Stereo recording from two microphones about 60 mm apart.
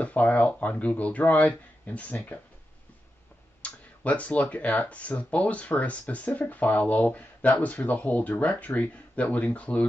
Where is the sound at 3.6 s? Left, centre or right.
Left.